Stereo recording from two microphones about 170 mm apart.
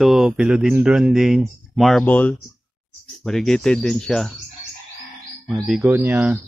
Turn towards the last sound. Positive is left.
turn(degrees=-15)  # may be behind; listen again after turning